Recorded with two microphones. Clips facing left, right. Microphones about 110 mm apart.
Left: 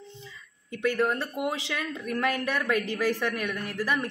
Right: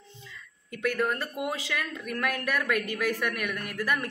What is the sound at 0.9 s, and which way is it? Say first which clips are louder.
Speech: left 2 dB; 25° left (ahead or behind).